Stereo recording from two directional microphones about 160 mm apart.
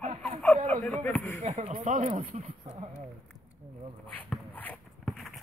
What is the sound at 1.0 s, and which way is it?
Speech, 10° left (ahead or behind).